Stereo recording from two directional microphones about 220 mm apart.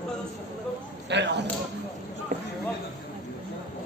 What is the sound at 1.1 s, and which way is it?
Arrow, 50° right (ahead or behind).